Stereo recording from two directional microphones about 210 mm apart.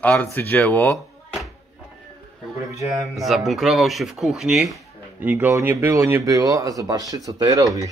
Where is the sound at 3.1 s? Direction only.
Centre (ahead or behind); by 7.6 s 20° right (ahead or behind).